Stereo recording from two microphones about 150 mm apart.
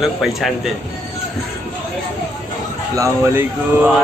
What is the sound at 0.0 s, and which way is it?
Speech, centre (ahead or behind).